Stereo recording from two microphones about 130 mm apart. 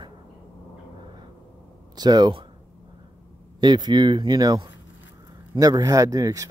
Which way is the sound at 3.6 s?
35° right (ahead or behind).